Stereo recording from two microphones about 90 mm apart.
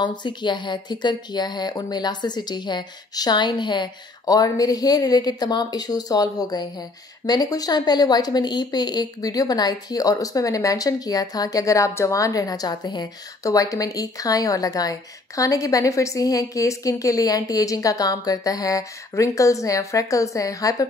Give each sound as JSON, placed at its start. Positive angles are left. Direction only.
{"t": 0.0, "sound": "a woman's voice", "side_deg": 55}